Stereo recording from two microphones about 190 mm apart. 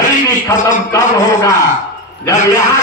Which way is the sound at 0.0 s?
20° left (ahead or behind).